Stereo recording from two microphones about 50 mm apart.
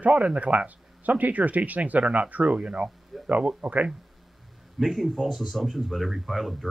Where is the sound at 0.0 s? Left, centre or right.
Right.